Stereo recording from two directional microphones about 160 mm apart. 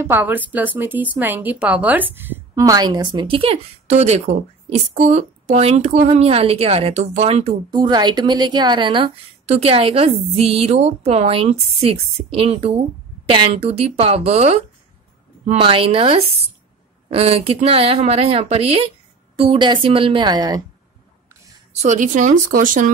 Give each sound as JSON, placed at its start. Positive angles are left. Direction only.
{"t": 0.0, "sound": "a woman's voice", "side_deg": -10}
{"t": 7.7, "sound": "a woman's voice", "side_deg": -25}
{"t": 15.6, "sound": "a woman's voice", "side_deg": -35}
{"t": 21.8, "sound": "speech", "side_deg": -50}